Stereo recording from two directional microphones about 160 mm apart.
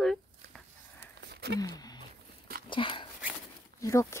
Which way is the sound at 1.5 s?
25° left (ahead or behind).